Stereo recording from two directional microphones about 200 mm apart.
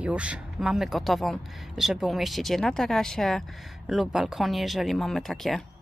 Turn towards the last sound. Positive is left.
turn(degrees=0)  # may be behind; listen again after turning